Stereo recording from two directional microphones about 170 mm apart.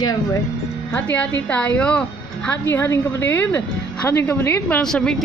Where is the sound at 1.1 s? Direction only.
10° left (ahead or behind).